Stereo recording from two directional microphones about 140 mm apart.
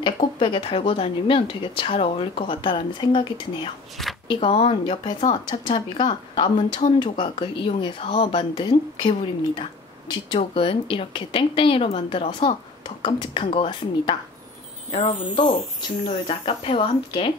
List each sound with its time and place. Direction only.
0.0 s speech: 35° left (ahead or behind)
14.9 s speech: 55° left (ahead or behind)
16.3 s speech: 40° left (ahead or behind)